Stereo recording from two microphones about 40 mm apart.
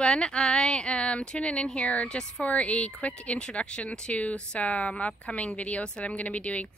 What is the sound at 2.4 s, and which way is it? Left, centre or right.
Speech, left.